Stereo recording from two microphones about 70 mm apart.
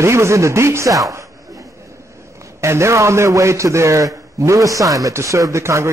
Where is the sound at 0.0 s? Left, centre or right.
Right.